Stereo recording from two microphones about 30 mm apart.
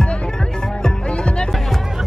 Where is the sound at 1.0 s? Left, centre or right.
Left.